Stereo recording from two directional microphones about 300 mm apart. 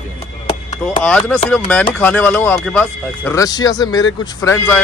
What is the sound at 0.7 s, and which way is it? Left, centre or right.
Speech, centre.